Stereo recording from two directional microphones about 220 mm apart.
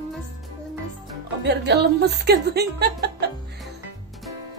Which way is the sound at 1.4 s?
50° right (ahead or behind).